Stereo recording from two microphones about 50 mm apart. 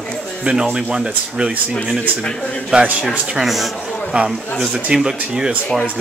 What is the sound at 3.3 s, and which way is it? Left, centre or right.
Speech, centre.